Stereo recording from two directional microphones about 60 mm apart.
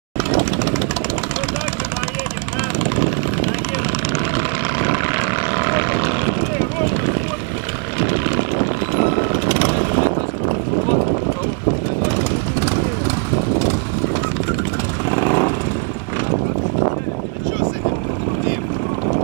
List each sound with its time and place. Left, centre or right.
0.3 s vehicle: right
4.1 s vehicle: right
9.5 s vehicle: left
12.0 s vehicle: left
15.0 s vehicle: left